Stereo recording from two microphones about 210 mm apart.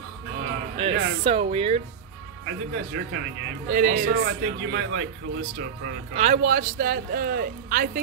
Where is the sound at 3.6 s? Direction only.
40° right (ahead or behind).